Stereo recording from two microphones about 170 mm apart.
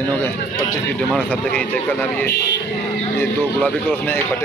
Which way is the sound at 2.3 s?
75° left (ahead or behind).